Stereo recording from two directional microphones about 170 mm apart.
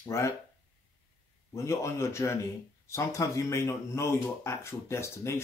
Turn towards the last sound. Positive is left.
turn(degrees=15)  # may be behind; listen again after turning